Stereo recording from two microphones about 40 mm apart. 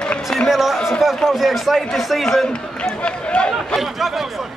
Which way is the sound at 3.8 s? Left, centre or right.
Centre.